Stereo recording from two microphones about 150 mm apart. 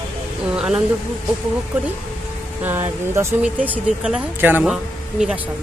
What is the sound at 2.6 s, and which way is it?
Speech, 15° right (ahead or behind).